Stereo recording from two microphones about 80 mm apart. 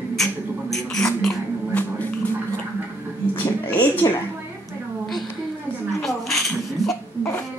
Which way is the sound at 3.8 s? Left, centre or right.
Left.